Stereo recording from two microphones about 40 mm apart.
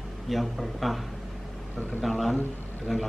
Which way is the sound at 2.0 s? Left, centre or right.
Centre.